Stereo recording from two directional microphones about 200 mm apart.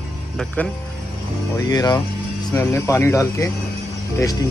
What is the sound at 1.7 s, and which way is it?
A man's voice, 20° left (ahead or behind).